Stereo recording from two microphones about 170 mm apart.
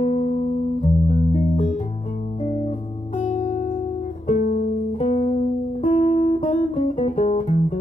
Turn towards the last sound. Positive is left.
turn(degrees=40)  # may be behind; listen again after turning